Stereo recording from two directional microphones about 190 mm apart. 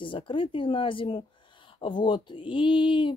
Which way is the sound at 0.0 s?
25° left (ahead or behind).